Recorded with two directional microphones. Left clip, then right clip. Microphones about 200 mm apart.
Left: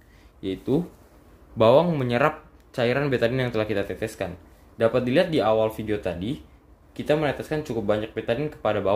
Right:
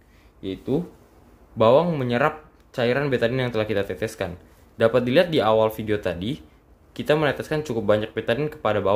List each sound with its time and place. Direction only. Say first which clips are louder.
0.4 s speech: left 1 dB; centre (ahead or behind); by 8.9 s 15° right (ahead or behind)